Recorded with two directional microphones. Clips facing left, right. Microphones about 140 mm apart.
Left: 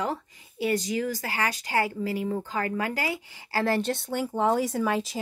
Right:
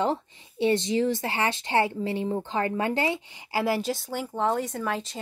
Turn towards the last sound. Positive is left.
turn(degrees=5)  # may be behind; listen again after turning